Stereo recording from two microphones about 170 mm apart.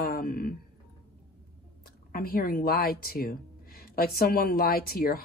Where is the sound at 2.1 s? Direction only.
60° left (ahead or behind).